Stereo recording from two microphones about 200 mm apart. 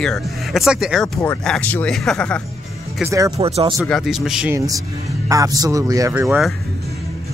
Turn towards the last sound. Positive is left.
turn(degrees=-15)  # may be behind; listen again after turning